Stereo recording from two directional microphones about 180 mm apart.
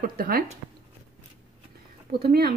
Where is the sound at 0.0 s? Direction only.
55° right (ahead or behind).